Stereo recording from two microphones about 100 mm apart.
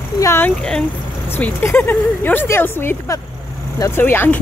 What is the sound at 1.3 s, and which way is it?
Speech, 20° left (ahead or behind).